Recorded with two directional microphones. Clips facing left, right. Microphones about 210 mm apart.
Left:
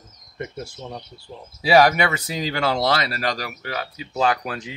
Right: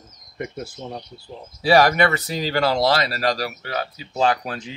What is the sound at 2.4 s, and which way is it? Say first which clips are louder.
Speech: right 2 dB; 35° right (ahead or behind).